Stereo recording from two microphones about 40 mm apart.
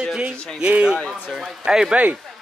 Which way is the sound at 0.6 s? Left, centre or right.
Right.